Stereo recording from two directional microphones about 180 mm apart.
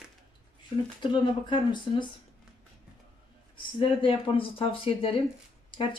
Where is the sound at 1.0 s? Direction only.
25° left (ahead or behind).